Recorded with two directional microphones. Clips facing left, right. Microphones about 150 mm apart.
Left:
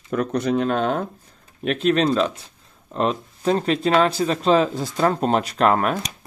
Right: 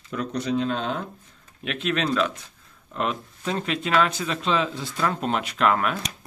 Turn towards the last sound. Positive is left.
turn(degrees=40)  # may be behind; listen again after turning